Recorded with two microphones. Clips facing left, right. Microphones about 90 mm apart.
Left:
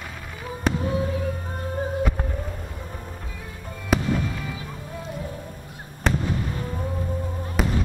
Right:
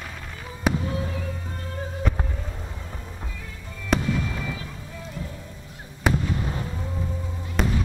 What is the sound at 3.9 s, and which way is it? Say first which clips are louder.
Music: left 1 dB; 5° left (ahead or behind).